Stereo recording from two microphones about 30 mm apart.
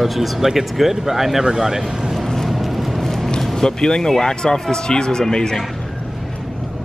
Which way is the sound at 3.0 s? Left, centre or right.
Centre.